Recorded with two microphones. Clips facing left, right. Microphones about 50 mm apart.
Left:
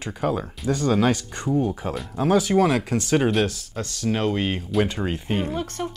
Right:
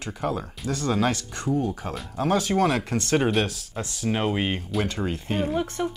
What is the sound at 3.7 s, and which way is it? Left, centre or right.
Speech, centre.